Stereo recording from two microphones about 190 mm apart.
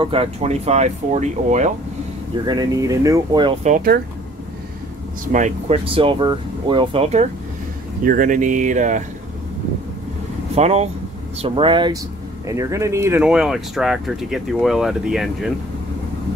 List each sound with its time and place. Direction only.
0.0 s speech: 30° right (ahead or behind)
2.4 s speech: 20° right (ahead or behind)
3.6 s speech: 45° right (ahead or behind)
5.2 s speech: 40° right (ahead or behind)
5.9 s speech: 30° right (ahead or behind)
8.0 s speech: 45° right (ahead or behind)
10.5 s speech: 35° right (ahead or behind); by 15.5 s centre (ahead or behind)